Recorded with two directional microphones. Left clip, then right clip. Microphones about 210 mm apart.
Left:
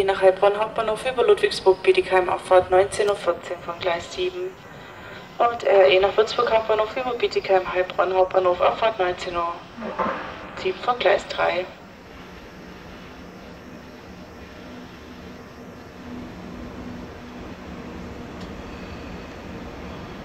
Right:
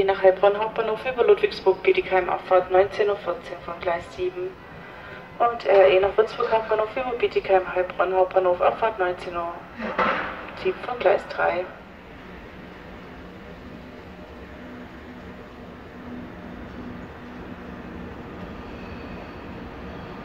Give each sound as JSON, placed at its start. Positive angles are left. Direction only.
{"t": 0.0, "sound": "speech", "side_deg": 50}
{"t": 2.8, "sound": "speech", "side_deg": 30}
{"t": 5.4, "sound": "speech", "side_deg": 30}
{"t": 9.8, "sound": "speech", "side_deg": -30}
{"t": 11.0, "sound": "speech", "side_deg": 30}